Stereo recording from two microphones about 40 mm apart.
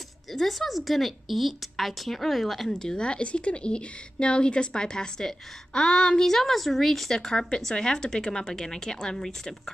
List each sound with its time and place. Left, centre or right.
0.3 s a woman's voice: centre
2.7 s a woman's voice: centre